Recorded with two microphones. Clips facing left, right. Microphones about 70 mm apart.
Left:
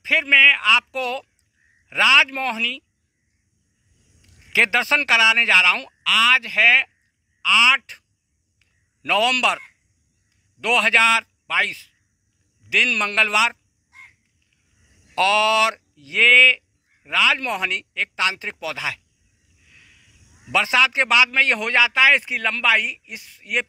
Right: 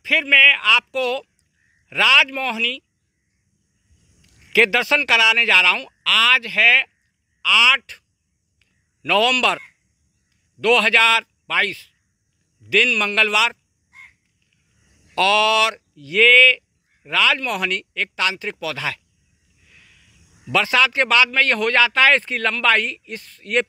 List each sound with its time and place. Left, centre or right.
0.0 s speech: left
4.2 s speech: left
9.0 s a man's voice: centre
10.6 s a man's voice: centre
15.1 s speech: left
19.7 s a sound: centre
20.5 s a man's voice: centre